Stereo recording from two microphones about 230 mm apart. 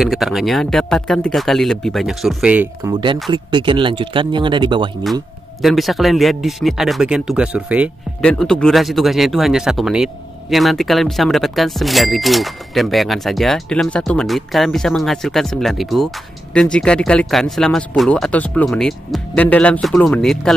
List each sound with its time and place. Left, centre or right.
0.0 s speech: centre; by 4.9 s right
5.6 s speech: centre